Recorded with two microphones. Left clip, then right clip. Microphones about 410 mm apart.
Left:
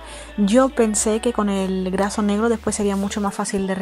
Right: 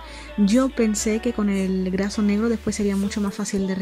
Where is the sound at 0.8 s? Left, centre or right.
Centre.